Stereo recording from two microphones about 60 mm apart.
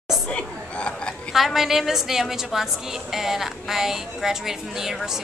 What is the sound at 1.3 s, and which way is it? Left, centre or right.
A woman's voice, centre.